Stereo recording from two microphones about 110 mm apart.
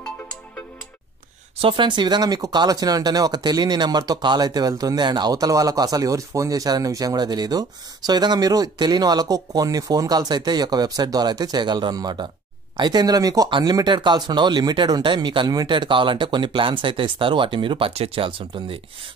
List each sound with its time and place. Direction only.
0.0 s music: 10° left (ahead or behind)
1.6 s speech: 50° right (ahead or behind)
13.5 s speech: 45° right (ahead or behind)